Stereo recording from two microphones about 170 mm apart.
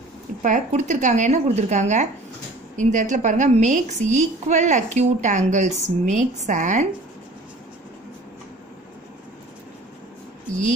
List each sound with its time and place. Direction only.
0.4 s a woman's voice: 45° right (ahead or behind)